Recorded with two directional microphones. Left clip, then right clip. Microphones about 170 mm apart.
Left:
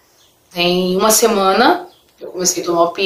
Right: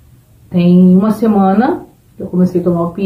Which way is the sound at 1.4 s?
15° left (ahead or behind).